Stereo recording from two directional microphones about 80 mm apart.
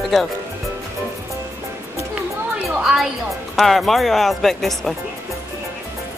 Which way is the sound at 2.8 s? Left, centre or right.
Centre.